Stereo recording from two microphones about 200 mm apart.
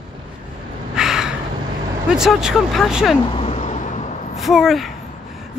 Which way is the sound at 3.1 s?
25° left (ahead or behind).